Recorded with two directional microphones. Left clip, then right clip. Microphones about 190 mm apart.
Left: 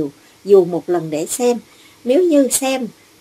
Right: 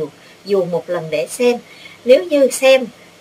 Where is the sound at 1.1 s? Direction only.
45° left (ahead or behind).